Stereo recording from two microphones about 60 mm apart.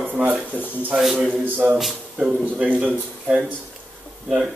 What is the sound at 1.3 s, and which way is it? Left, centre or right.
Speech, right.